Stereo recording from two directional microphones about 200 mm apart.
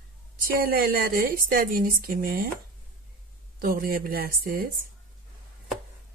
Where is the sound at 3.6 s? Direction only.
45° right (ahead or behind).